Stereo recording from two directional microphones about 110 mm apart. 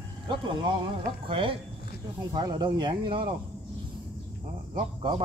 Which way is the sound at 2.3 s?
40° right (ahead or behind).